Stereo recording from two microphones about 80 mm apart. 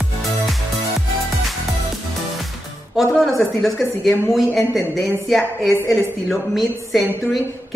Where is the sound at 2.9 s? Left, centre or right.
Centre.